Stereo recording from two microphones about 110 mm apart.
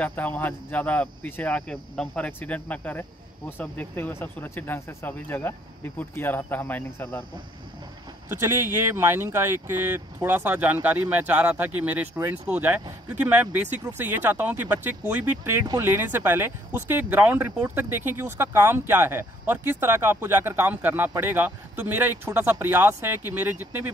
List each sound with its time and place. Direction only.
0.0 s speech: 15° left (ahead or behind)
8.3 s speech: 20° right (ahead or behind)